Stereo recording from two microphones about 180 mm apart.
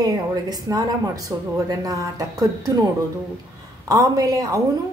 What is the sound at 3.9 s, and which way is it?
Speech, 20° right (ahead or behind).